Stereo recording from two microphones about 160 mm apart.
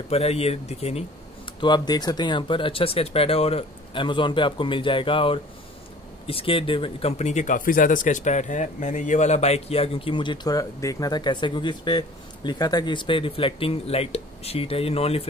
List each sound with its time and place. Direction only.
0.1 s speech: 40° left (ahead or behind)
1.6 s speech: 25° left (ahead or behind)